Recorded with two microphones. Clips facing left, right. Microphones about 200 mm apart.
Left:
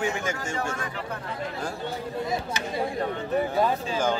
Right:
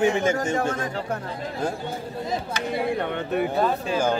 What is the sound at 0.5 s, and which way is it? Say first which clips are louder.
Speech: right 6 dB; 40° right (ahead or behind).